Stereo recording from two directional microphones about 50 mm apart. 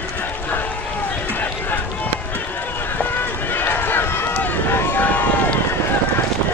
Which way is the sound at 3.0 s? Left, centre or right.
Left.